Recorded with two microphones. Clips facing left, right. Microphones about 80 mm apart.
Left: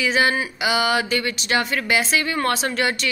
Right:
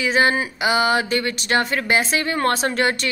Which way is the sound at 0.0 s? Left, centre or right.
Right.